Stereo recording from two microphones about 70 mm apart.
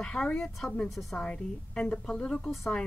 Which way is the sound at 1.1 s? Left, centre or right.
Centre.